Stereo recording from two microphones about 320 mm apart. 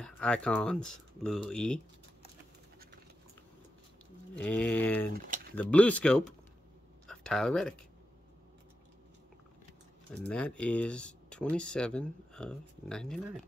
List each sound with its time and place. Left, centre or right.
0.0 s speech: centre
4.4 s speech: centre
5.1 s speech: right
5.6 s speech: centre
10.1 s speech: centre